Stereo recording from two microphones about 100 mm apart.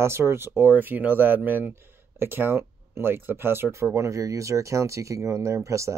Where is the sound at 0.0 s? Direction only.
25° right (ahead or behind).